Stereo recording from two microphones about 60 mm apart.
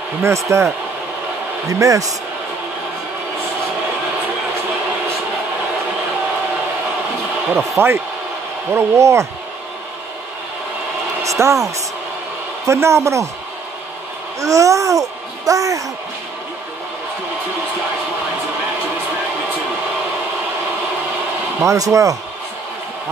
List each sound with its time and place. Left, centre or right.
0.2 s speech: right
1.7 s speech: right
7.5 s speech: right
8.7 s speech: right
11.2 s speech: right
14.4 s speech: right
21.6 s speech: right